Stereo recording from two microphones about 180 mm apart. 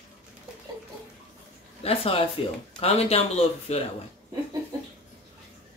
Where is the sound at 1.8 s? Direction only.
30° left (ahead or behind).